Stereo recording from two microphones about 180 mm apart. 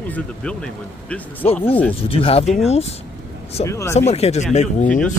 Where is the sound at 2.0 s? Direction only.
30° left (ahead or behind).